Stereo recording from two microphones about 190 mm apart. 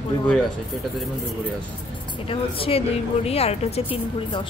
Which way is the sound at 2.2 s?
30° left (ahead or behind).